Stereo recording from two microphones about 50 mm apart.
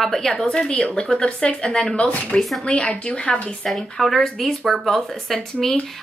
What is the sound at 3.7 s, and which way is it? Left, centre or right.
Speech, centre.